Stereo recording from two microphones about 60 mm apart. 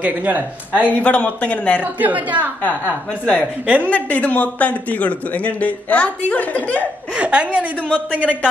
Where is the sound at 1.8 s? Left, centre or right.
Right.